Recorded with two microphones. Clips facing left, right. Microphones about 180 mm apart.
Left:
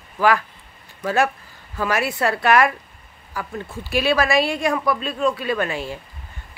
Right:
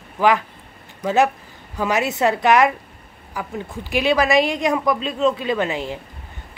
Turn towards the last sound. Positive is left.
turn(degrees=-20)  # may be behind; listen again after turning